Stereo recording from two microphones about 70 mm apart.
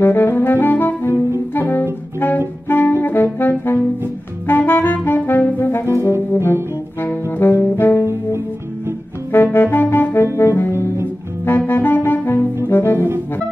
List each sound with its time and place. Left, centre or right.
0.0 s saxophone: left
1.5 s music: left
2.1 s saxophone: left
4.5 s music: left
7.2 s saxophone: left
9.3 s brass instrument: left
10.7 s music: right
11.4 s saxophone: left
12.6 s music: left